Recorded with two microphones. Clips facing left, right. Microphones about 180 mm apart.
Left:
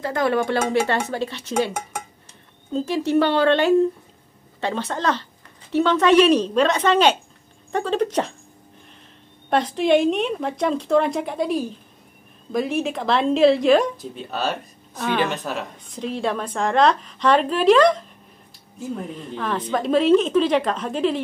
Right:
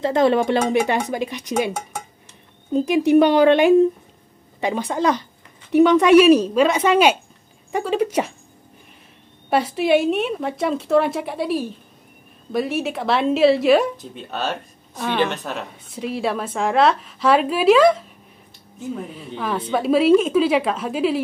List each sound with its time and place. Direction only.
0.0 s a woman's voice: 25° right (ahead or behind)
2.7 s a woman's voice: 15° right (ahead or behind)
9.5 s a woman's voice: 10° right (ahead or behind)